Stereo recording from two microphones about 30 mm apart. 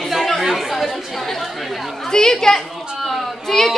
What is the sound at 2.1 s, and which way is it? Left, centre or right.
Speech, left.